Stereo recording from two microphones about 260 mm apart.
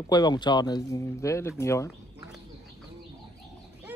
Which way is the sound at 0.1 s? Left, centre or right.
Centre.